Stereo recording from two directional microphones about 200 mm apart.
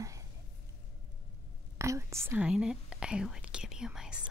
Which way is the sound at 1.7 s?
15° right (ahead or behind).